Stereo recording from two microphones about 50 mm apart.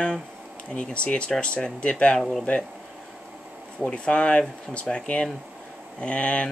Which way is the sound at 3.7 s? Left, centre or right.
Centre.